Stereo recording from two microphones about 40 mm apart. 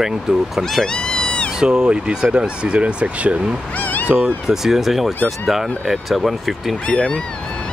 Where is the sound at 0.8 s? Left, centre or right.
Centre.